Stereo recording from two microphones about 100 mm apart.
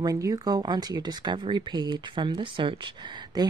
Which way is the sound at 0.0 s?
35° right (ahead or behind).